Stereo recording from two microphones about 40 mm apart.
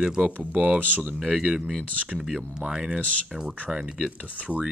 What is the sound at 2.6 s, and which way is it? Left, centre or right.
Speech, centre.